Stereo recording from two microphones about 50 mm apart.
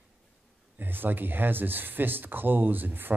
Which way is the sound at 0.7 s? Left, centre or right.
Right.